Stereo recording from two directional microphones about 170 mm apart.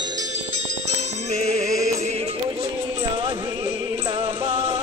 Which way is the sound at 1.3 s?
40° right (ahead or behind).